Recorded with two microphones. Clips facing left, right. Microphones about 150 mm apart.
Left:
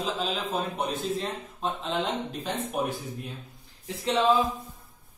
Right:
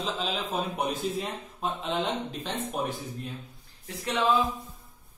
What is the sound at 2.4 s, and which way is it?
Speech, 10° left (ahead or behind).